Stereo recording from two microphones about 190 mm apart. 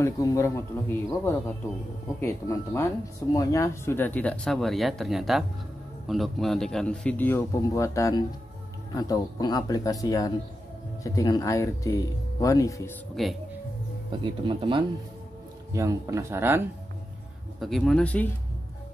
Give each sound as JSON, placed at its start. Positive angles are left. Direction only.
{"t": 0.0, "sound": "a man's voice", "side_deg": 15}
{"t": 13.1, "sound": "a man's voice", "side_deg": 0}
{"t": 14.2, "sound": "speech", "side_deg": -25}
{"t": 17.6, "sound": "a man's voice", "side_deg": 0}